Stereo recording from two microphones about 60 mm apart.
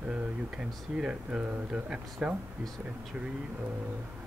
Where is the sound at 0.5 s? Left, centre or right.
Centre.